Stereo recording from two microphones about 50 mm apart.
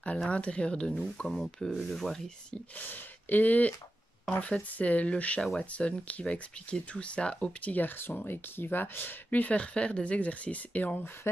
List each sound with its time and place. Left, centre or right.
0.3 s speech: left
1.3 s speech: centre
2.8 s speech: left; by 7.5 s centre
7.6 s speech: left